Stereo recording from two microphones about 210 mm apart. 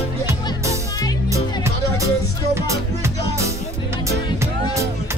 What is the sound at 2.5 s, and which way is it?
Music, 15° right (ahead or behind).